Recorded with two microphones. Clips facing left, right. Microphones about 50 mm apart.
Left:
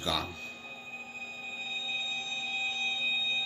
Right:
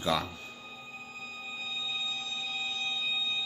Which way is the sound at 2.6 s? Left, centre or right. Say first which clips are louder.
Left 2 dB; left.